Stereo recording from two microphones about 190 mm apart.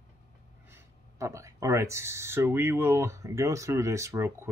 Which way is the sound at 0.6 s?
15° right (ahead or behind).